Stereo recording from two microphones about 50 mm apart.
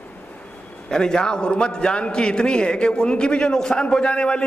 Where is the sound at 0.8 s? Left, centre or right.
Centre.